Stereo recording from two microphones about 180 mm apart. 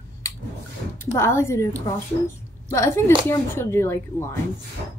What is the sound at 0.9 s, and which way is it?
A woman's voice, 15° left (ahead or behind).